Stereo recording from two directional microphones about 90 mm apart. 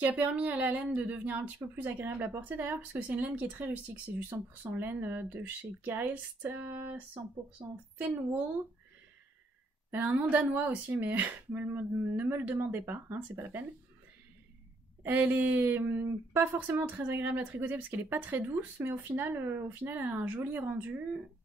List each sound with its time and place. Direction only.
0.0 s speech: 15° right (ahead or behind)
7.6 s a woman's voice: 55° right (ahead or behind)
9.8 s speech: 20° right (ahead or behind)
15.0 s speech: 20° right (ahead or behind)